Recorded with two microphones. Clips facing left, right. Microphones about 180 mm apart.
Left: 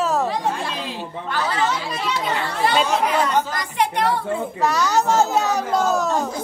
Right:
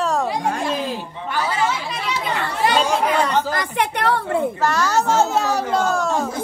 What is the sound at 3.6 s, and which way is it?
Speech, 60° right (ahead or behind).